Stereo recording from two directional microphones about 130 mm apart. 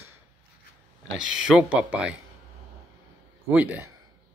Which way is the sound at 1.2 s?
5° right (ahead or behind).